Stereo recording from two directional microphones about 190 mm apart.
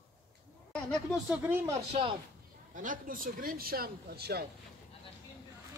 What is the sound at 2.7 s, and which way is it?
Speech, 45° right (ahead or behind).